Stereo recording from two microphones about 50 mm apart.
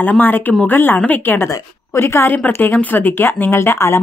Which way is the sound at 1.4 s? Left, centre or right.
Left.